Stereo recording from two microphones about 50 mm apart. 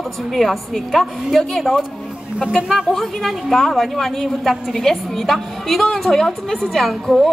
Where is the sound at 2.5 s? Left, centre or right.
Centre.